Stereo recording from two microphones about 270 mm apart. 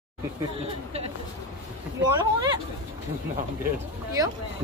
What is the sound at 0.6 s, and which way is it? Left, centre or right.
Speech, right.